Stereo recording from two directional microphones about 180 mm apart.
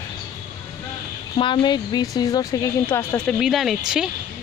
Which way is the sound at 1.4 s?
25° left (ahead or behind).